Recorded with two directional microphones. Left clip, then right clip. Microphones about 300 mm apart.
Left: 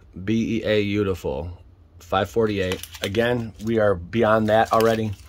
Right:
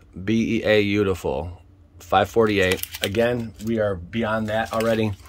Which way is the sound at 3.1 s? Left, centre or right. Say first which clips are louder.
Even; centre.